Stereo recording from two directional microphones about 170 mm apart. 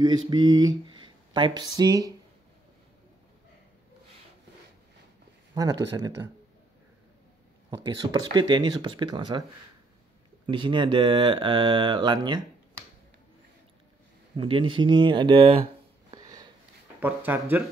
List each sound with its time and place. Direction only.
0.0 s speech: 25° right (ahead or behind)
5.5 s speech: 20° right (ahead or behind)
7.7 s speech: 25° right (ahead or behind)
14.3 s speech: 30° right (ahead or behind)
16.1 s sniff: 25° right (ahead or behind)
17.0 s speech: 10° right (ahead or behind)